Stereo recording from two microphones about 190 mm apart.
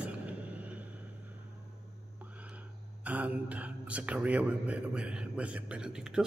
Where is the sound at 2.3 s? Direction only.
5° right (ahead or behind).